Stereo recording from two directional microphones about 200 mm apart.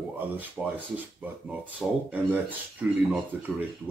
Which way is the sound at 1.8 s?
5° right (ahead or behind).